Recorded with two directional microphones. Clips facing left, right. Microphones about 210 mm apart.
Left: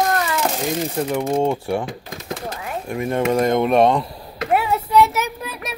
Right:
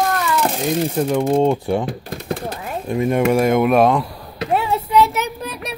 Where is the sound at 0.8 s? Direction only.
Centre (ahead or behind).